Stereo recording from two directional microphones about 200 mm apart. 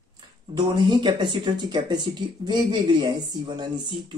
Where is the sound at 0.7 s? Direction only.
20° right (ahead or behind).